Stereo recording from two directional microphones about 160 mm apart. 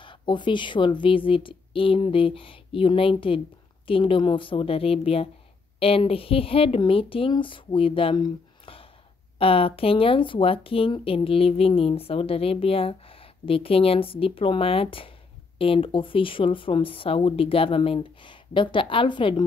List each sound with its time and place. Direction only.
0.0 s speech: 30° left (ahead or behind)